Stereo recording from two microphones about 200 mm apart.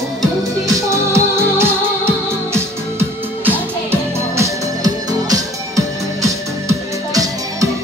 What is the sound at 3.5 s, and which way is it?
Music, 10° right (ahead or behind).